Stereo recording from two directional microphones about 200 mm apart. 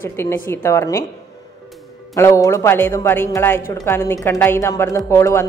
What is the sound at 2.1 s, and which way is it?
A man's voice, 15° left (ahead or behind).